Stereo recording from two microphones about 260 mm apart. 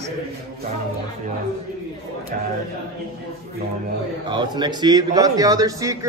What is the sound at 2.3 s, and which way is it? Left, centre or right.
Speech, right.